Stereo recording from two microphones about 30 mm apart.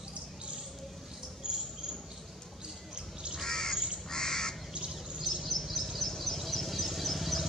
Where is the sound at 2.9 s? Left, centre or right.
Right.